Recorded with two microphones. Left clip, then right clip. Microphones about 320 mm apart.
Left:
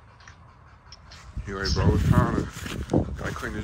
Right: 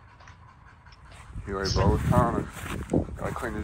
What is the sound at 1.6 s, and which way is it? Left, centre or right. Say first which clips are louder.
Speech: right 1 dB; right.